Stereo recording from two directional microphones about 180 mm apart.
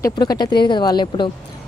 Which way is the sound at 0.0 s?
20° left (ahead or behind).